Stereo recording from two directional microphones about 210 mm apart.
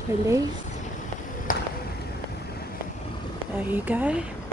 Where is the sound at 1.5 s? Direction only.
40° left (ahead or behind).